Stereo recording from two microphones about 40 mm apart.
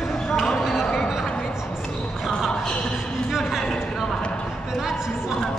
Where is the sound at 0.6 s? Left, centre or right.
Centre.